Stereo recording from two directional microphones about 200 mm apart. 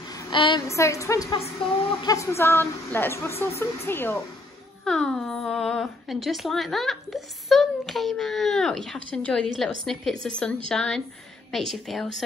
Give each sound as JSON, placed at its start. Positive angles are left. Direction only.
{"t": 0.1, "sound": "a woman's voice", "side_deg": 25}